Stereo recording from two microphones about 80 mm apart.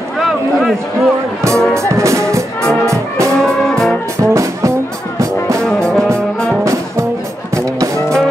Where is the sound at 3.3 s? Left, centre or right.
Centre.